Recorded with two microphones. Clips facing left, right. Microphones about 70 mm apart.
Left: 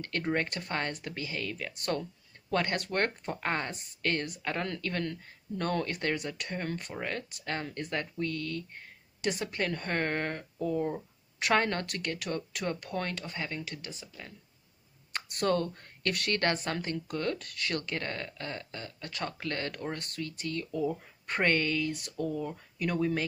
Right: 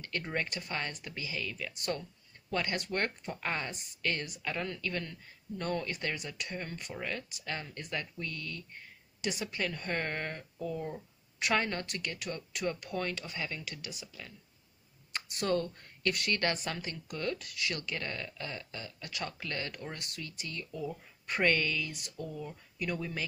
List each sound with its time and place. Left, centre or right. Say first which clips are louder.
0.0 s speech: left 5 dB; left
13.2 s speech: left 2 dB; left
15.1 s speech: left 3 dB; left